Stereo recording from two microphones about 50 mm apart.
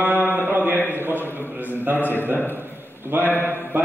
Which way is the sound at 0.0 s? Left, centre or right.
Right.